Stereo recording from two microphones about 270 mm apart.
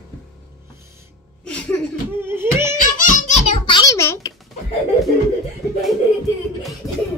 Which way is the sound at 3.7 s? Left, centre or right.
Centre.